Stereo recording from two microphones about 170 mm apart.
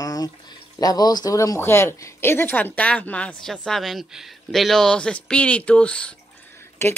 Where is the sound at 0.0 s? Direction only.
20° left (ahead or behind).